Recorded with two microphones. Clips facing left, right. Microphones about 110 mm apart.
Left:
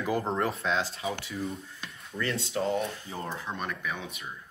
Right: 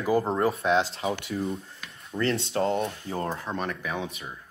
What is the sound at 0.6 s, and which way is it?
Speech, 25° right (ahead or behind).